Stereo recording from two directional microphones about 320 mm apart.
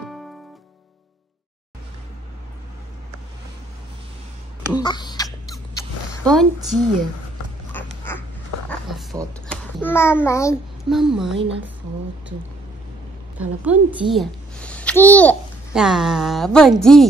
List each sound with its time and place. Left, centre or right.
4.7 s a sound: centre
6.2 s a woman's voice: centre
8.1 s dog: centre
9.5 s a child's voice: centre
13.4 s a child's voice: centre